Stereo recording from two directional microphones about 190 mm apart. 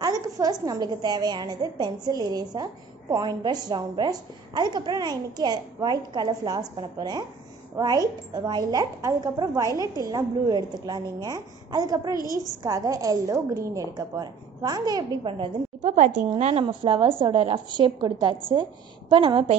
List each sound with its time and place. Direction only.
0.0 s a woman's voice: 20° right (ahead or behind)